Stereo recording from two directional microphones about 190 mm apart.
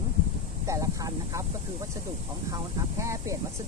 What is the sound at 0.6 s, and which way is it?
Speech, 15° right (ahead or behind).